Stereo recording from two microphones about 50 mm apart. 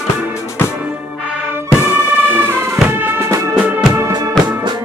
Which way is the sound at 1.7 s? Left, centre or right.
Left.